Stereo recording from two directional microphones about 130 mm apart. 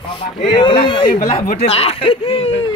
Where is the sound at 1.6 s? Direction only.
50° left (ahead or behind).